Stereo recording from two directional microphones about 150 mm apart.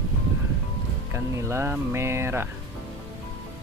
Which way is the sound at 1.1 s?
15° right (ahead or behind).